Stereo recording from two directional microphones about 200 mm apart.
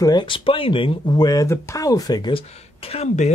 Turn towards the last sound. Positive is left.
turn(degrees=30)  # may be behind; listen again after turning